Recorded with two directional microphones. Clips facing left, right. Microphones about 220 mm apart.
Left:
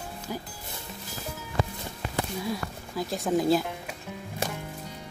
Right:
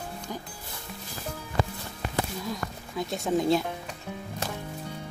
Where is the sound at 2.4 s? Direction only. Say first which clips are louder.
Left 2 dB; 5° left (ahead or behind).